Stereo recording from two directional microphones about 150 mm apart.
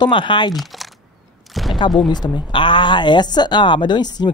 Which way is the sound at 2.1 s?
30° left (ahead or behind).